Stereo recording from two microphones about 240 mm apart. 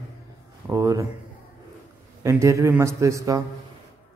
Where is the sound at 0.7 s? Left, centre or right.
Centre.